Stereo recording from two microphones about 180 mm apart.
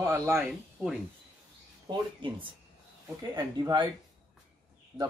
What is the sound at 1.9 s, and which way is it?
Speech, 25° right (ahead or behind).